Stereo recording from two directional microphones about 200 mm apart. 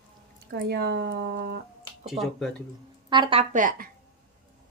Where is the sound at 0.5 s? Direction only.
55° right (ahead or behind).